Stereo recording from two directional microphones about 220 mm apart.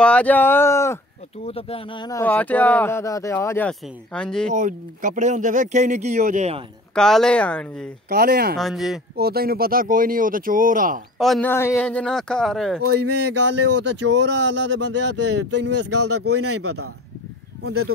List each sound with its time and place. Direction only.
0.0 s speech: 5° left (ahead or behind)
1.4 s speech: 25° left (ahead or behind); by 4.5 s 5° left (ahead or behind)
4.5 s speech: 35° right (ahead or behind)
7.0 s a man's voice: 5° left (ahead or behind)
8.1 s speech: 45° right (ahead or behind)
8.5 s a man's voice: centre (ahead or behind)
9.1 s speech: 45° right (ahead or behind)
11.1 s a man's voice: centre (ahead or behind)
12.8 s speech: 50° right (ahead or behind)
15.8 s speech: 90° right